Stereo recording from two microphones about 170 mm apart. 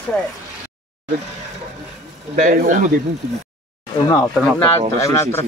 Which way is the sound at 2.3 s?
50° right (ahead or behind).